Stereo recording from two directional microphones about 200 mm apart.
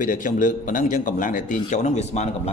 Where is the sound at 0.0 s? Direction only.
40° left (ahead or behind).